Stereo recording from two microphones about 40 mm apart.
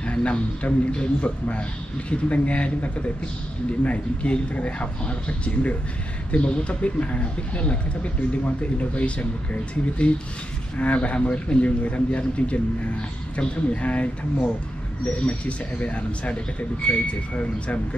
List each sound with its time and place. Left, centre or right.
0.0 s speech: left
15.0 s speech: left